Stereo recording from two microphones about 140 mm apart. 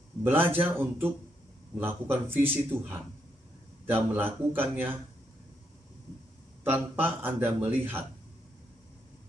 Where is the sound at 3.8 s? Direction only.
15° right (ahead or behind).